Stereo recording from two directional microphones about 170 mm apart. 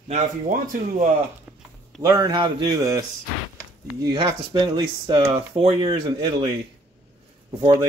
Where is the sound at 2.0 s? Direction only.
25° right (ahead or behind).